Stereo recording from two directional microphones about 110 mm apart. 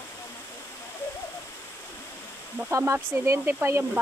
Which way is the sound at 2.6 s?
25° right (ahead or behind).